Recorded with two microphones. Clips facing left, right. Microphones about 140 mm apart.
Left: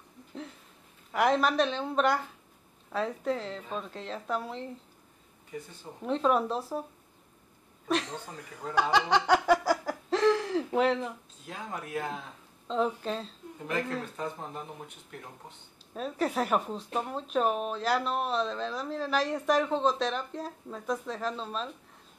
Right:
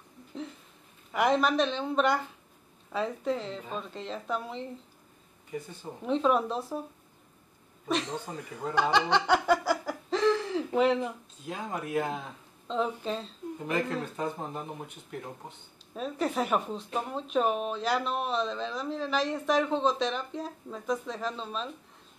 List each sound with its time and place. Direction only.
1.1 s speech: centre (ahead or behind)
6.0 s speech: centre (ahead or behind)
8.3 s speech: 10° right (ahead or behind)
8.9 s a sound: 5° left (ahead or behind)
12.6 s speech: centre (ahead or behind)
15.9 s speech: centre (ahead or behind)